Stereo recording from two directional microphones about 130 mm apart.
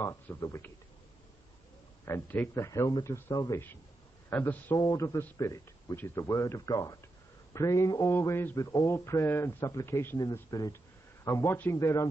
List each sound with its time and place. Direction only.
0.0 s speech: 20° left (ahead or behind)
2.0 s a man's voice: 15° left (ahead or behind)
4.3 s a man's voice: 15° left (ahead or behind)
4.7 s speech: 30° left (ahead or behind)